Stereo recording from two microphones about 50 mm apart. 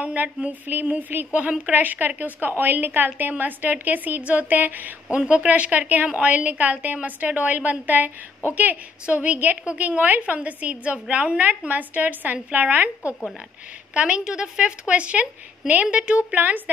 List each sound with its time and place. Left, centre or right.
0.0 s a woman's voice: right
5.1 s a woman's voice: right
9.0 s a woman's voice: right
13.9 s a woman's voice: right